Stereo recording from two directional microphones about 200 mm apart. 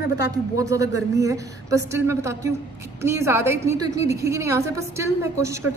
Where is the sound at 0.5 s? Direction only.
15° right (ahead or behind).